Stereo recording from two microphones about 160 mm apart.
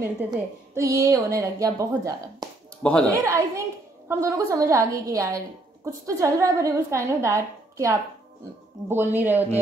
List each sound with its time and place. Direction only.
0.3 s a woman's voice: 20° right (ahead or behind)
2.8 s speech: 5° left (ahead or behind)
3.1 s a woman's voice: 20° right (ahead or behind)